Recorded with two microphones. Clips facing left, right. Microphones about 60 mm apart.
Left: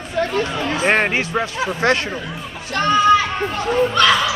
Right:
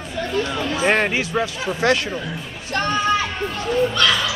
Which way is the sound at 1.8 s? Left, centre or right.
Left.